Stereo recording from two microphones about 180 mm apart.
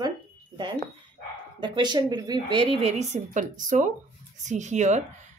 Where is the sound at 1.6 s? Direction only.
25° right (ahead or behind); by 5.0 s 40° right (ahead or behind).